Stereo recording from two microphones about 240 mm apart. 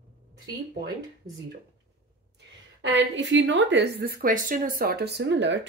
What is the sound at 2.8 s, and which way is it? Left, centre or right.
A woman's voice, right.